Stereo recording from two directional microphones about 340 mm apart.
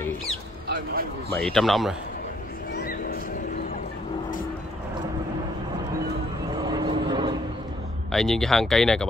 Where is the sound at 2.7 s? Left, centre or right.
Left.